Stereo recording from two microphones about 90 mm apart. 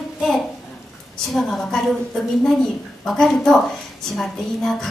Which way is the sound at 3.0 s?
5° left (ahead or behind).